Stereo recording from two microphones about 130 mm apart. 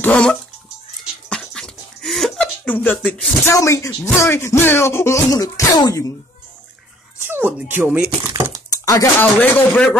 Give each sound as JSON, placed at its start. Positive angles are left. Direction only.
{"t": 0.0, "sound": "speech", "side_deg": 10}
{"t": 1.3, "sound": "a sound", "side_deg": 5}
{"t": 3.5, "sound": "speech", "side_deg": 25}
{"t": 7.2, "sound": "speech", "side_deg": -15}
{"t": 8.7, "sound": "typing", "side_deg": 25}
{"t": 9.2, "sound": "speech", "side_deg": 15}